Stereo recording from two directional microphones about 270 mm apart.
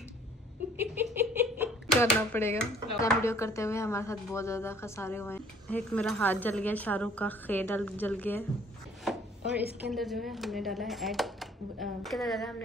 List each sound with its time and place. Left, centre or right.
0.7 s a sound: centre
2.0 s speech: centre
9.1 s chopping: centre
9.4 s a woman's voice: right
9.8 s speech: centre